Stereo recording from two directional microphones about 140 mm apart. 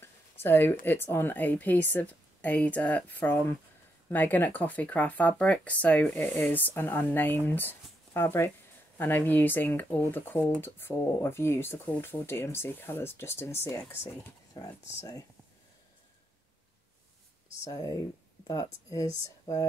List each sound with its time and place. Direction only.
0.0 s a sound: 15° left (ahead or behind)
0.8 s speech: 15° left (ahead or behind)
17.6 s speech: 25° left (ahead or behind)